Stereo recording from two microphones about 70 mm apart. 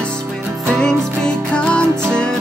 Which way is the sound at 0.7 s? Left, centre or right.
Centre.